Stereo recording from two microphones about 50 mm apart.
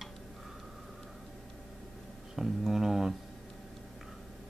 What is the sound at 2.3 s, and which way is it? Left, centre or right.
Speech, centre.